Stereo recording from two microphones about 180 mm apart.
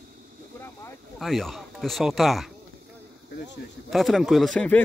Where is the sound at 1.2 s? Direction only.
Centre (ahead or behind).